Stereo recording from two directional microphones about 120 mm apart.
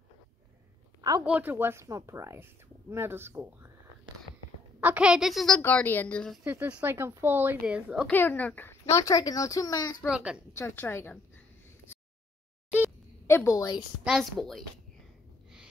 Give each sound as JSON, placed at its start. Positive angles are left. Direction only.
{"t": 1.2, "sound": "speech", "side_deg": -15}
{"t": 4.7, "sound": "a woman's voice", "side_deg": -10}
{"t": 5.6, "sound": "a woman's voice", "side_deg": 15}
{"t": 6.4, "sound": "a woman's voice", "side_deg": -10}
{"t": 8.1, "sound": "speech", "side_deg": 15}
{"t": 10.0, "sound": "a woman's voice", "side_deg": -10}
{"t": 10.5, "sound": "speech", "side_deg": 20}
{"t": 13.3, "sound": "speech", "side_deg": 25}
{"t": 14.0, "sound": "a woman's voice", "side_deg": 0}